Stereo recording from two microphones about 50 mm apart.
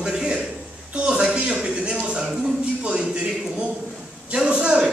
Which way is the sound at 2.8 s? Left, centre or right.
Right.